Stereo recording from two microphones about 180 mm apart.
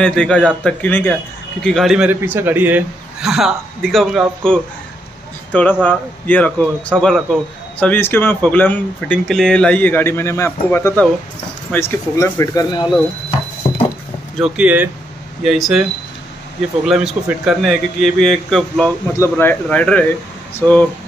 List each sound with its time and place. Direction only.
0.0 s a man's voice: 5° left (ahead or behind); by 12.9 s 20° left (ahead or behind)
13.6 s a sound: 35° left (ahead or behind)
14.4 s a man's voice: 5° right (ahead or behind)
16.8 s a man's voice: centre (ahead or behind)
19.1 s speech: 15° left (ahead or behind)